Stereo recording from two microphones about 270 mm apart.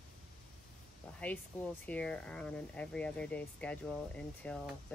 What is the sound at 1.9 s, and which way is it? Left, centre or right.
Speech, centre.